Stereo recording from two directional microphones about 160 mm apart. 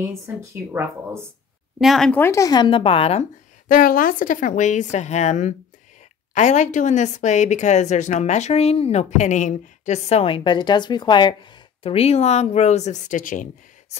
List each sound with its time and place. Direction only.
0.0 s speech: 15° right (ahead or behind)
1.8 s speech: centre (ahead or behind)
2.1 s a woman's voice: 15° left (ahead or behind); by 3.3 s 40° left (ahead or behind)
3.6 s a woman's voice: 60° left (ahead or behind); by 11.3 s 30° left (ahead or behind)
11.8 s a woman's voice: 40° left (ahead or behind); by 13.5 s 55° left (ahead or behind)